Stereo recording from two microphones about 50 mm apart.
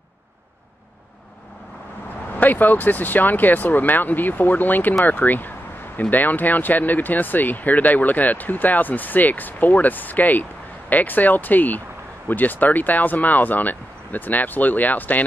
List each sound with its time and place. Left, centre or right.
2.3 s speech: left